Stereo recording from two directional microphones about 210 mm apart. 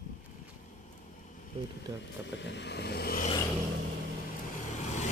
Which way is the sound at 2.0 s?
55° left (ahead or behind).